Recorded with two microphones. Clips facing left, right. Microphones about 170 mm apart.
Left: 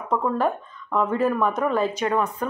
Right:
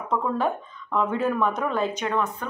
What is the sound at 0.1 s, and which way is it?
Speech, centre (ahead or behind).